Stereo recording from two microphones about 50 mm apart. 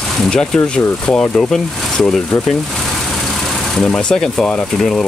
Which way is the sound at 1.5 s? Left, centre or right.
Centre.